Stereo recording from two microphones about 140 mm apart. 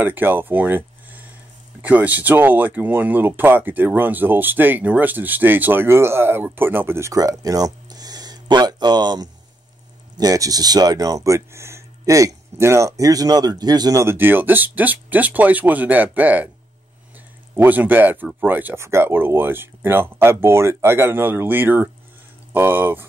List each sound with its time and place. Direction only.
0.0 s speech: 15° right (ahead or behind)
17.6 s speech: 15° right (ahead or behind)